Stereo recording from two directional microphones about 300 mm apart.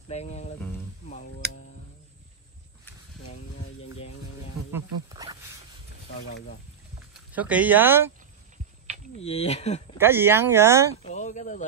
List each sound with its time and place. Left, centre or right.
0.1 s a sound: left
4.7 s speech: centre
7.3 s speech: centre
9.2 s speech: left
9.9 s speech: centre
11.1 s a sound: left